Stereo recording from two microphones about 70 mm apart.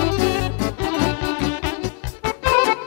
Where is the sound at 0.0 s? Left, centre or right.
Left.